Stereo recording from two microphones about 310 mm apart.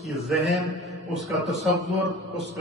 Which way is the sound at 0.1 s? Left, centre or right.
Centre.